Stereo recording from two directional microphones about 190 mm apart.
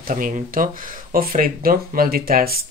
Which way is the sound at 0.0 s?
45° right (ahead or behind).